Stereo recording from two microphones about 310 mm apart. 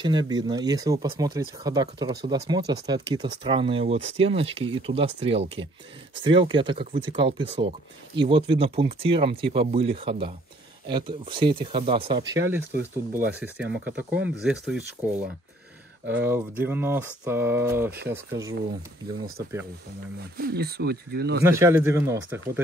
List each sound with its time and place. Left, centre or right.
0.0 s speech: centre
20.3 s speech: right
21.4 s speech: centre